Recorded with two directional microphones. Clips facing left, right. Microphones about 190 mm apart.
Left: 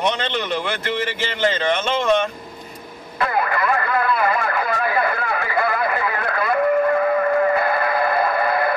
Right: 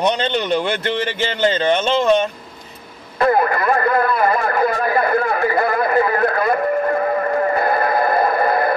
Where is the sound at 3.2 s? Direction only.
40° right (ahead or behind).